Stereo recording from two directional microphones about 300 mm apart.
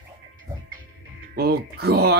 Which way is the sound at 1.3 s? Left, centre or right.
Right.